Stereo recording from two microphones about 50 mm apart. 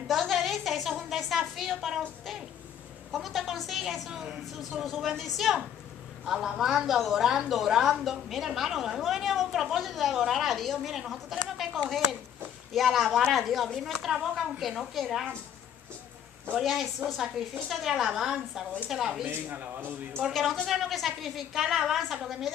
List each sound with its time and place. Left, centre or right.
0.1 s a sound: centre
3.1 s a woman's voice: centre
16.6 s a woman's voice: centre
19.5 s a man's voice: right
20.6 s a woman's voice: centre